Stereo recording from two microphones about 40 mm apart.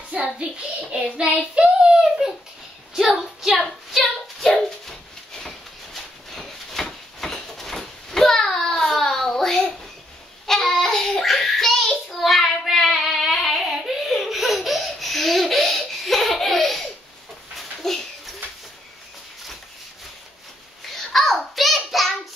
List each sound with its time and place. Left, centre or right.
0.1 s child singing: right
3.2 s a sound: centre
4.8 s dog: centre
6.3 s a sound: centre
9.3 s child singing: centre
13.3 s baby laughter: centre
17.6 s dog: centre
20.9 s child singing: centre